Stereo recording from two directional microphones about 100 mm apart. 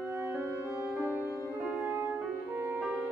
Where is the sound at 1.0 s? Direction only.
25° left (ahead or behind).